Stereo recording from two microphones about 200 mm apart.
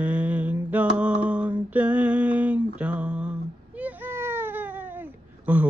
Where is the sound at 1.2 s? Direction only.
5° right (ahead or behind).